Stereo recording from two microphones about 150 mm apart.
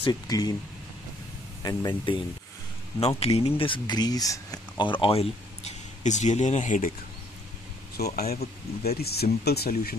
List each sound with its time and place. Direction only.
0.0 s speech: 25° left (ahead or behind)
1.6 s speech: 25° left (ahead or behind)
3.2 s speech: 40° left (ahead or behind); by 6.9 s 55° left (ahead or behind)
8.0 s speech: 90° left